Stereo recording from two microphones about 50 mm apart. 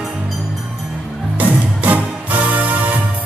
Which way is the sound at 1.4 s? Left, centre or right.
Right.